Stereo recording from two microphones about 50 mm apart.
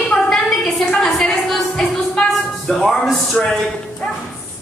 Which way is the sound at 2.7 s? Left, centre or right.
Centre.